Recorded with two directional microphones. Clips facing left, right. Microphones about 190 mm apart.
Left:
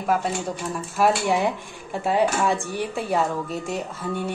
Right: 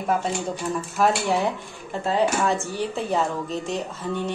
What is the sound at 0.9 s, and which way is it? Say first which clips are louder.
Speech: left 2 dB; 10° left (ahead or behind).